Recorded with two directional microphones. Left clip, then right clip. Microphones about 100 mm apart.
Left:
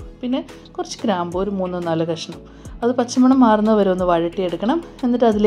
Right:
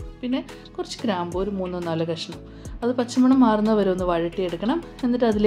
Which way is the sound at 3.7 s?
25° left (ahead or behind).